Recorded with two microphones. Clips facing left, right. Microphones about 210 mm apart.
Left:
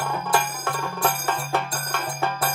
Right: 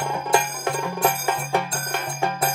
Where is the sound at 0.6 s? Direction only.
15° right (ahead or behind).